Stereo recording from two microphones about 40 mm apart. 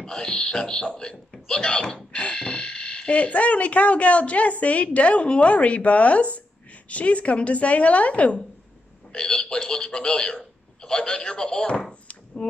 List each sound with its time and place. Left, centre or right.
0.0 s a man's voice: centre; by 8.4 s left
9.1 s speech: centre
11.9 s a sound: left